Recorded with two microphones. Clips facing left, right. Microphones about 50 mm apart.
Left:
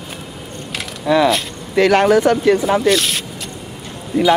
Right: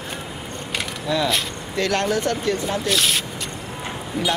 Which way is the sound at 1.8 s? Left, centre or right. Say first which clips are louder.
Left 9 dB; centre.